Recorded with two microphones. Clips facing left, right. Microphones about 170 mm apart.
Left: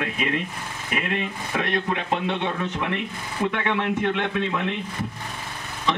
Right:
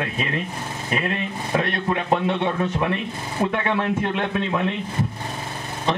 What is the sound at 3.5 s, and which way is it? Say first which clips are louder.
Speech: even; 30° right (ahead or behind).